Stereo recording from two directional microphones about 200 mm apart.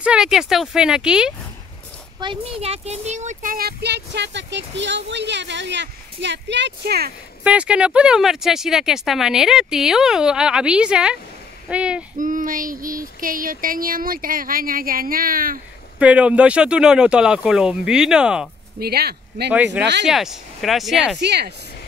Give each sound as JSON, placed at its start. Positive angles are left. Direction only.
{"t": 0.0, "sound": "speech", "side_deg": -5}
{"t": 2.1, "sound": "speech", "side_deg": -25}
{"t": 7.4, "sound": "speech", "side_deg": -5}
{"t": 12.2, "sound": "a sound", "side_deg": -40}
{"t": 16.0, "sound": "speech", "side_deg": -5}
{"t": 18.8, "sound": "speech", "side_deg": -50}
{"t": 19.5, "sound": "speech", "side_deg": -5}
{"t": 21.2, "sound": "speech", "side_deg": -55}